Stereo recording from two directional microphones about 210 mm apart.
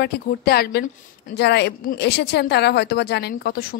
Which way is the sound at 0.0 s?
50° left (ahead or behind).